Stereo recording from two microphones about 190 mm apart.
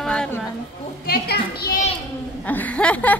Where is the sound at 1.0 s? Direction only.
55° left (ahead or behind).